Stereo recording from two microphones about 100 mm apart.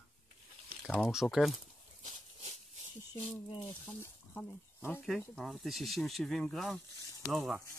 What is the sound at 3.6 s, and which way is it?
Speech, 20° left (ahead or behind).